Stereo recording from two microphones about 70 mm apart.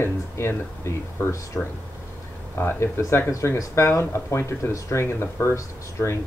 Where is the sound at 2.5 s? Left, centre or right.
Left.